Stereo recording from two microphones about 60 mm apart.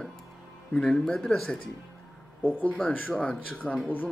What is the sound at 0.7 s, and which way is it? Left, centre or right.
Speech, centre.